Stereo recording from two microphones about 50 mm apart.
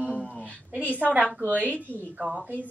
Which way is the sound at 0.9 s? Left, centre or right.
Right.